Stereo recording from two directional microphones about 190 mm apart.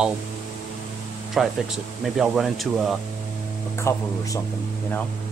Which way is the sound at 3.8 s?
15° left (ahead or behind).